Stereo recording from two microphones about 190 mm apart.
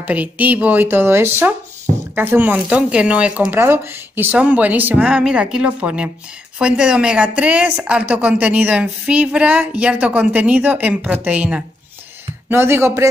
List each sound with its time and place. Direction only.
0.0 s speech: 10° right (ahead or behind)